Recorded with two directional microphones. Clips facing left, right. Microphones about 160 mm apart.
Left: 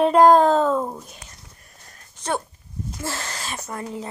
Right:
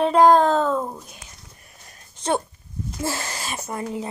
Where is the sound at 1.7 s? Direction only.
15° right (ahead or behind).